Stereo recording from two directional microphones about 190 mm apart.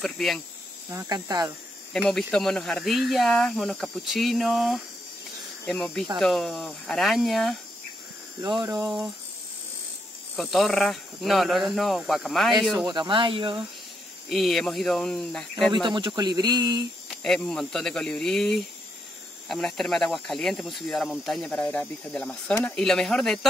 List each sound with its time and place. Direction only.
0.0 s speech: centre (ahead or behind)
0.8 s speech: 15° right (ahead or behind)
2.0 s speech: 5° left (ahead or behind)
8.4 s speech: 20° right (ahead or behind)
8.7 s speech: 5° right (ahead or behind)
10.3 s speech: centre (ahead or behind)
12.7 s speech: 20° right (ahead or behind)
14.3 s speech: centre (ahead or behind)
15.7 s speech: 25° right (ahead or behind)
17.2 s speech: 5° left (ahead or behind)